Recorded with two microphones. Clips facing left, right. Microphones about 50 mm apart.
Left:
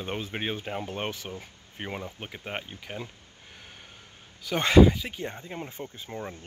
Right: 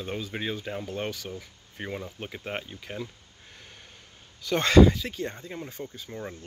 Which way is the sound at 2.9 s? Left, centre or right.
Centre.